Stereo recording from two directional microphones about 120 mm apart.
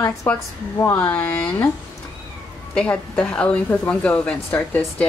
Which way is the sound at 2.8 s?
10° left (ahead or behind).